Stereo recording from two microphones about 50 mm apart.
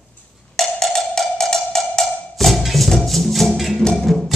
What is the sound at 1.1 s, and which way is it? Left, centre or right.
Music, centre.